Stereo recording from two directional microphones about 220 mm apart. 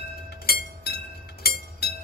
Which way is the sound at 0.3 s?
45° left (ahead or behind).